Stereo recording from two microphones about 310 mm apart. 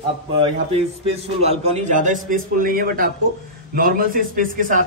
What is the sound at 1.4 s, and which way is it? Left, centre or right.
A man's voice, right.